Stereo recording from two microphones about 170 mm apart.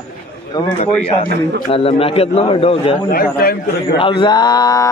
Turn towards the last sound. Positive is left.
turn(degrees=20)  # may be behind; listen again after turning